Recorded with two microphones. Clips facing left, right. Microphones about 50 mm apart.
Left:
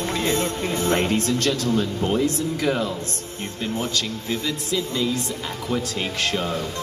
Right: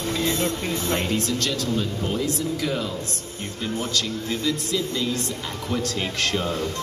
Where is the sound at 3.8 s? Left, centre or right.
Left.